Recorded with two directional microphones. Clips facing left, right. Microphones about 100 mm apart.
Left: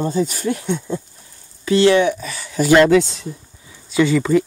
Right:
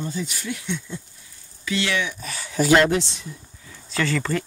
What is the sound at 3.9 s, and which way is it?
Speech, 10° left (ahead or behind).